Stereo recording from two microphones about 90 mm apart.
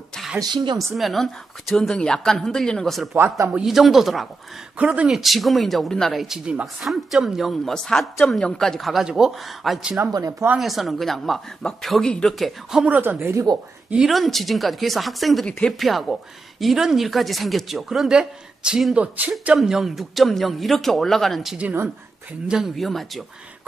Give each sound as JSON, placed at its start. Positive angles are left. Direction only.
{"t": 0.4, "sound": "speech", "side_deg": -55}
{"t": 0.7, "sound": "speech", "side_deg": 0}
{"t": 3.1, "sound": "speech", "side_deg": -30}
{"t": 3.5, "sound": "speech", "side_deg": -5}
{"t": 4.7, "sound": "speech", "side_deg": -10}
{"t": 12.8, "sound": "speech", "side_deg": -20}
{"t": 14.0, "sound": "speech", "side_deg": 0}